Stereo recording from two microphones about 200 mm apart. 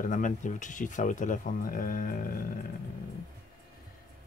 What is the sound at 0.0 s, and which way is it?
Speech, 40° left (ahead or behind).